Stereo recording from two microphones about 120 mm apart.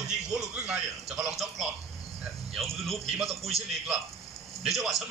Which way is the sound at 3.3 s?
60° right (ahead or behind).